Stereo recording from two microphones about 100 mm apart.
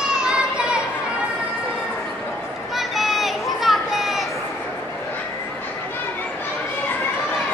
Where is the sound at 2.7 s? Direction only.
Centre (ahead or behind).